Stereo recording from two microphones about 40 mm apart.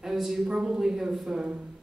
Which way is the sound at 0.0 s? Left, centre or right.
Centre.